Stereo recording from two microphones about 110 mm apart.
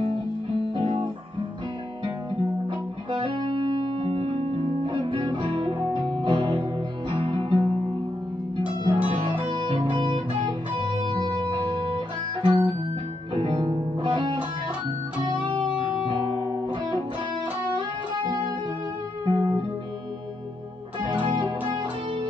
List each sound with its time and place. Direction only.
0.6 s guitar: 55° right (ahead or behind)
3.1 s music: 50° right (ahead or behind)
12.4 s guitar: 40° right (ahead or behind)
13.3 s music: 45° right (ahead or behind)
17.7 s music: 45° right (ahead or behind)
21.0 s music: 50° right (ahead or behind)